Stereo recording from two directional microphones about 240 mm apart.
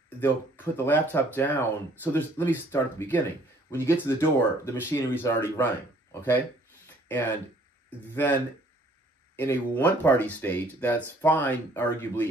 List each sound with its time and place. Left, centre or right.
0.2 s speech: centre
7.1 s speech: centre
9.4 s speech: centre